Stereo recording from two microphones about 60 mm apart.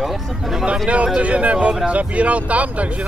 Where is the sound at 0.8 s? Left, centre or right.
Centre.